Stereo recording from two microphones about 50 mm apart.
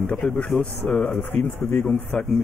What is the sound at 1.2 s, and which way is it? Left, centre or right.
Speech, left.